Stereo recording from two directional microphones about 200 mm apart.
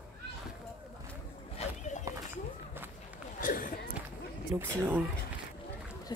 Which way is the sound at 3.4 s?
45° left (ahead or behind).